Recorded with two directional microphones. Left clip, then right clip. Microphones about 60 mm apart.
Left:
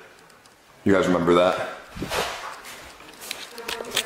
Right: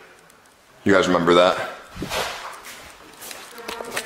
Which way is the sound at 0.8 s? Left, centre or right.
Centre.